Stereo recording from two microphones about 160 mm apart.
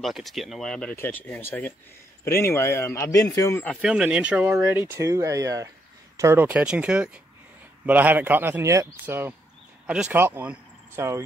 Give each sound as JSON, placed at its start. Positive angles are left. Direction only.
{"t": 0.0, "sound": "a man's voice", "side_deg": 0}
{"t": 3.8, "sound": "speech", "side_deg": -5}